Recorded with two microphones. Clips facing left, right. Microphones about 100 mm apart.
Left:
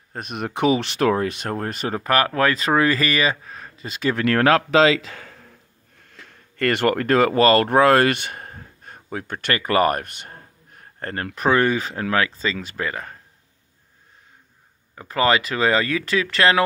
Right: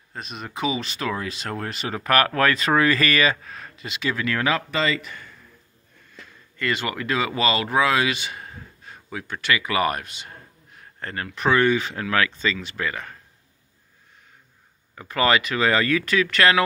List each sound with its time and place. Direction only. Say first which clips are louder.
0.1 s speech: left 6 dB; 55° left (ahead or behind)
1.1 s speech: left 7 dB; 50° left (ahead or behind)
1.5 s speech: left 4 dB; 40° left (ahead or behind)
2.0 s speech: even; 25° left (ahead or behind)
3.8 s speech: left 5 dB; 45° left (ahead or behind); by 5.5 s 80° left
6.0 s speech: even; 65° left (ahead or behind); by 13.2 s 35° left (ahead or behind)
15.0 s speech: left 1 dB; 30° left (ahead or behind)